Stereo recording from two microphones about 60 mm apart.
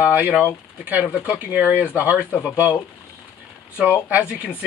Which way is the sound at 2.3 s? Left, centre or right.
Left.